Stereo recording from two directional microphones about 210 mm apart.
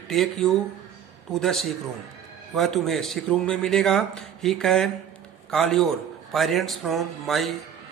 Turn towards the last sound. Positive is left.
turn(degrees=0)  # may be behind; listen again after turning